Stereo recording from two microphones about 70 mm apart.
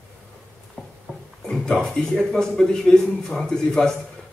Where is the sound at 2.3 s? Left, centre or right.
Centre.